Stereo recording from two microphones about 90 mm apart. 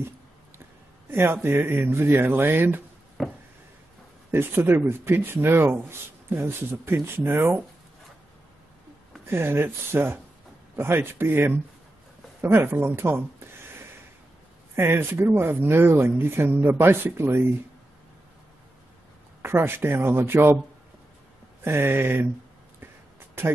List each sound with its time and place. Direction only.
1.1 s speech: 25° right (ahead or behind)
3.2 s a sound: centre (ahead or behind)
4.3 s speech: 25° right (ahead or behind)
9.3 s speech: 25° right (ahead or behind)
12.4 s a sound: 30° right (ahead or behind)
14.8 s speech: 25° right (ahead or behind)
19.4 s speech: 25° right (ahead or behind)
21.6 s speech: 25° right (ahead or behind)